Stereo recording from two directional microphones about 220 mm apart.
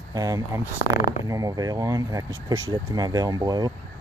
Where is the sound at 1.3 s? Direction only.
15° right (ahead or behind).